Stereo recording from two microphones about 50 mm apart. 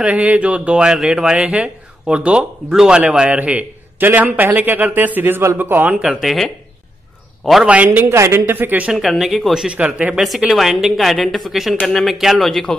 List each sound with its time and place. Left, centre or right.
0.0 s speech: right
3.3 s a man's voice: right
6.2 s a woman's voice: centre
7.6 s speech: right
8.0 s a woman's voice: right
8.9 s a woman's voice: centre
9.7 s speech: right
10.5 s a woman's voice: centre
11.8 s speech: centre
12.1 s a woman's voice: centre